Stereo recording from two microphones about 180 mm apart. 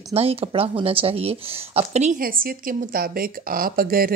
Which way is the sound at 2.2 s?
55° right (ahead or behind).